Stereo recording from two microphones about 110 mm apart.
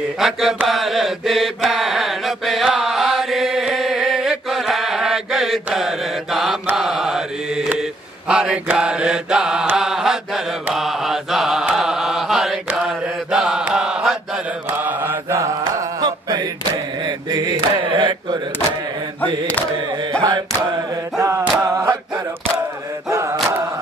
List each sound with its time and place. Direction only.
0.2 s mantra: 5° right (ahead or behind)
14.7 s mantra: 20° right (ahead or behind); by 16.4 s 35° right (ahead or behind)
17.0 s chant: 40° right (ahead or behind)
19.2 s chant: 15° left (ahead or behind)
20.2 s a sound: 35° right (ahead or behind)
21.2 s chant: 25° right (ahead or behind)
23.0 s a sound: 25° right (ahead or behind)